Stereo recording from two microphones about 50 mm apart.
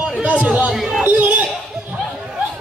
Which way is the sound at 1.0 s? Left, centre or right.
Right.